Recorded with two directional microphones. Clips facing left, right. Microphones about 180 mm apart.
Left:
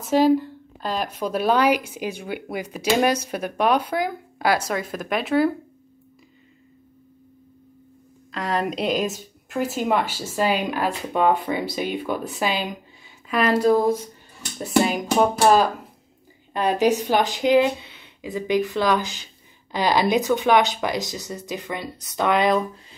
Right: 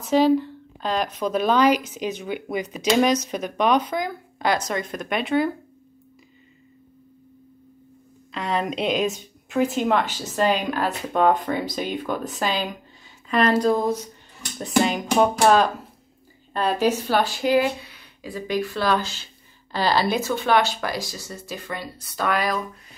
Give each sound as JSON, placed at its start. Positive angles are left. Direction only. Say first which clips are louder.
{"t": 0.1, "sound": "a woman's voice", "louder": "even", "side_deg": 10}
{"t": 8.3, "sound": "a woman's voice", "louder": "left 1 dB", "side_deg": 0}